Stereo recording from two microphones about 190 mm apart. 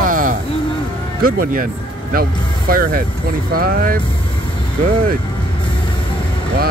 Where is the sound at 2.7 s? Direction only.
50° right (ahead or behind).